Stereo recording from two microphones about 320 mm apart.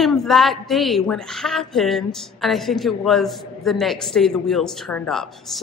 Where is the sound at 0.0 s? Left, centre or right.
Centre.